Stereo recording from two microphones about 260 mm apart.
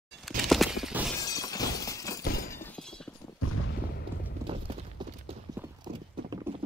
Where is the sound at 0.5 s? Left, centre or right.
Centre.